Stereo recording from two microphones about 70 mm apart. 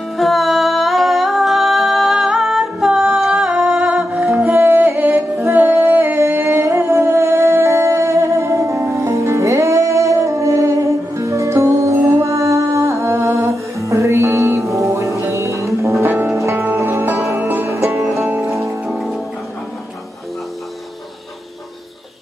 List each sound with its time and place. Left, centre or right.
0.2 s music: centre
4.6 s music: right
17.4 s music: right
17.6 s music: right
18.9 s music: centre